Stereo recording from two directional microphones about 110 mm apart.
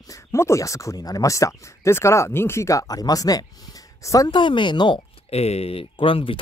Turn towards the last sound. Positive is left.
turn(degrees=55)  # may be behind; listen again after turning